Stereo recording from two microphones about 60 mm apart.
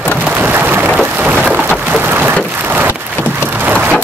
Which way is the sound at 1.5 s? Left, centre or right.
Right.